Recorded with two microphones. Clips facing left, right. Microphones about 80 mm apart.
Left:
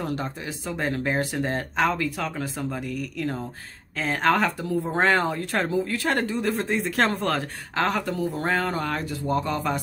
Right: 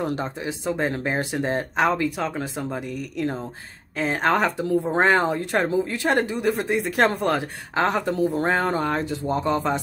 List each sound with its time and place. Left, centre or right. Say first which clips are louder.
0.0 s speech: right 3 dB; right